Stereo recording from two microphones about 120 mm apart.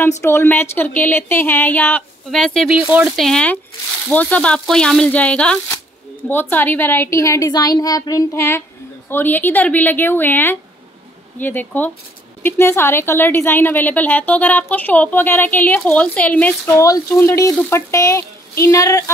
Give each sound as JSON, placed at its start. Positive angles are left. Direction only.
{"t": 0.2, "sound": "speech", "side_deg": 20}
{"t": 2.3, "sound": "speech", "side_deg": 5}
{"t": 2.7, "sound": "speech", "side_deg": -10}
{"t": 3.2, "sound": "a woman's voice", "side_deg": 5}
{"t": 16.7, "sound": "a woman's voice", "side_deg": 25}